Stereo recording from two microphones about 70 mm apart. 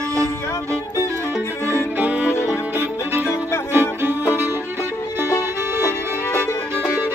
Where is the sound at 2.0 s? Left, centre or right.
Right.